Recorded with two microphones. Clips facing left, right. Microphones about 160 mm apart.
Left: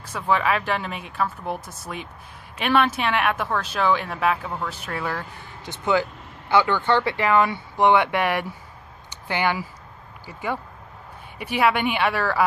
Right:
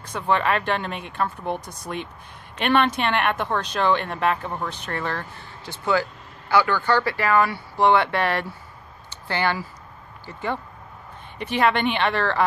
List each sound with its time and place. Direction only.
0.0 s speech: 5° left (ahead or behind)
5.7 s a woman's voice: 20° left (ahead or behind)